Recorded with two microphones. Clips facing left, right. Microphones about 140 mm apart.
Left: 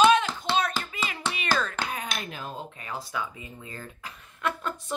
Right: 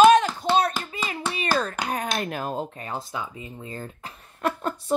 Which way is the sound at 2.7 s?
35° right (ahead or behind).